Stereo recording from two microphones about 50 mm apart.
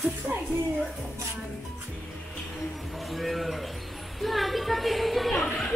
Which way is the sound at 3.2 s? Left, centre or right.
Centre.